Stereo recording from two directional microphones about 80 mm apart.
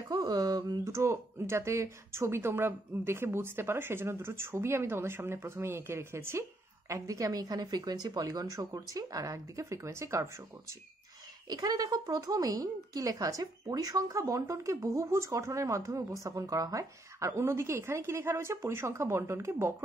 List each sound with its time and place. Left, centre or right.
0.1 s speech: right
0.8 s speech: right
6.9 s speech: right
11.4 s speech: right